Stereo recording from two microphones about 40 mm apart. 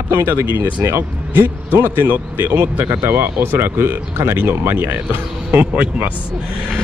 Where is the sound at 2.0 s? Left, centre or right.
Right.